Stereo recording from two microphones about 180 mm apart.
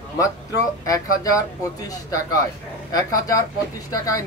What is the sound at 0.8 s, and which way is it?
Speech, 20° left (ahead or behind).